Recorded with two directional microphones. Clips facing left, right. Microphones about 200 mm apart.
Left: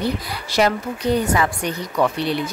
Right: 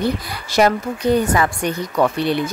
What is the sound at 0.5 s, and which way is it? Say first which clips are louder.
Speech: right 3 dB; 45° right (ahead or behind).